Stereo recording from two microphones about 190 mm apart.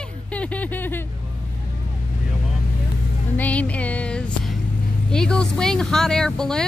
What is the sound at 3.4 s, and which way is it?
Music, 5° left (ahead or behind).